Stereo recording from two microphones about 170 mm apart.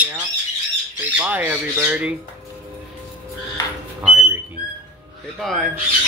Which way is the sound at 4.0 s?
10° right (ahead or behind).